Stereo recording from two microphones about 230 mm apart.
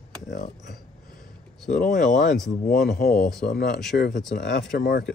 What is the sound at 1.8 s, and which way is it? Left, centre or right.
Speech, left.